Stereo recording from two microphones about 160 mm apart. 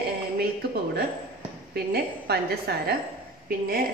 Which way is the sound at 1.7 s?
80° right.